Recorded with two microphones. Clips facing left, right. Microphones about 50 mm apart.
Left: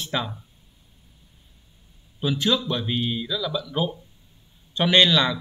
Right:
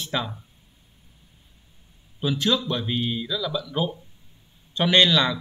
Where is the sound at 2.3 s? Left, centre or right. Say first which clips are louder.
Even; centre.